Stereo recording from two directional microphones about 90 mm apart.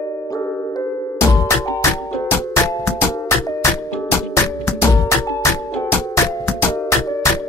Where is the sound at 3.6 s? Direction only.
30° left (ahead or behind).